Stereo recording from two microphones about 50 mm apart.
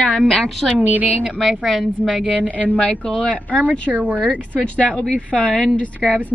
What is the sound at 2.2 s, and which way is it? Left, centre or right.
Speech, left.